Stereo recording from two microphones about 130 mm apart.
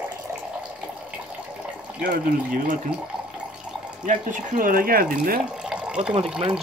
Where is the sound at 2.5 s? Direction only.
90° right.